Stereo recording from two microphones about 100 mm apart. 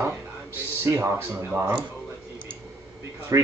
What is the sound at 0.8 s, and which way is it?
Speech, 25° right (ahead or behind).